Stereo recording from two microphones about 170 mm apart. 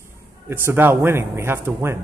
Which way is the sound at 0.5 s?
15° right (ahead or behind).